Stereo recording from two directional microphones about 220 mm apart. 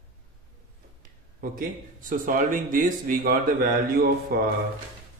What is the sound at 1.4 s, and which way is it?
Speech, 40° right (ahead or behind).